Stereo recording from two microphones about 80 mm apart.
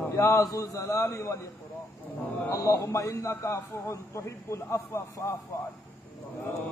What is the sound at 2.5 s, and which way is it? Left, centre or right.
A man's voice, left.